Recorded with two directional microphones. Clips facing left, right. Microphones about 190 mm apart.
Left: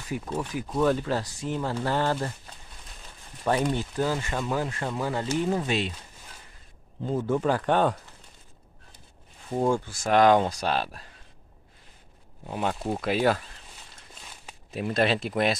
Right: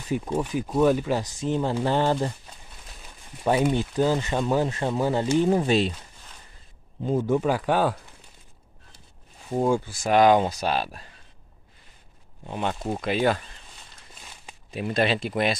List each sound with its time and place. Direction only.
0.3 s speech: 10° right (ahead or behind)
3.4 s speech: 15° right (ahead or behind); by 5.9 s 35° right (ahead or behind)
7.1 s speech: 15° right (ahead or behind)
9.5 s speech: 5° right (ahead or behind)
12.4 s speech: 5° left (ahead or behind)
14.7 s speech: centre (ahead or behind)